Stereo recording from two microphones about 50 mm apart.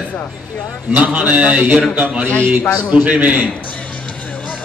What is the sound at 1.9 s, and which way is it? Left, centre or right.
A man's voice, right.